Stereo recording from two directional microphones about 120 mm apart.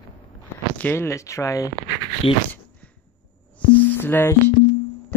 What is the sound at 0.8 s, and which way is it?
Speech, 20° left (ahead or behind).